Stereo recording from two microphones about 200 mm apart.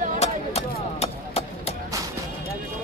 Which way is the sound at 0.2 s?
30° left (ahead or behind).